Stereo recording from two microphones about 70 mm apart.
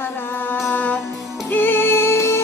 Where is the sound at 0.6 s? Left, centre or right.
Left.